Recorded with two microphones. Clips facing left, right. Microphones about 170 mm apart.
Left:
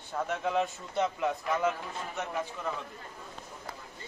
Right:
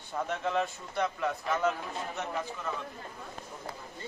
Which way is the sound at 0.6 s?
20° left (ahead or behind).